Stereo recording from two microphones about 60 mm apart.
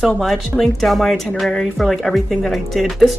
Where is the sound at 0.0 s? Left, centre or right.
Centre.